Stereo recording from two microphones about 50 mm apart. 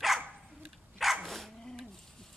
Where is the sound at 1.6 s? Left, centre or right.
Centre.